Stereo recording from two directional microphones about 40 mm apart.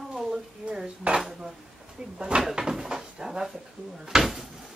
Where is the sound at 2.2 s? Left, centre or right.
Right.